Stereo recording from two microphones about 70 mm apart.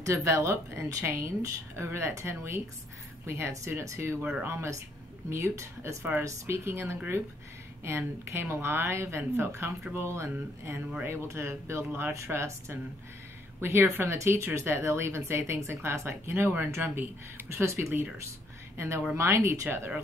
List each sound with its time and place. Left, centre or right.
0.0 s speech: right
4.2 s speech: right
4.5 s speech: right